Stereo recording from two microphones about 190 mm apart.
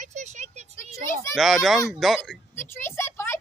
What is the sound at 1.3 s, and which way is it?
Speech, centre (ahead or behind).